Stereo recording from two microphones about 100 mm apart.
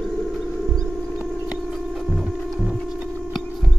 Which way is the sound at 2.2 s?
5° right (ahead or behind).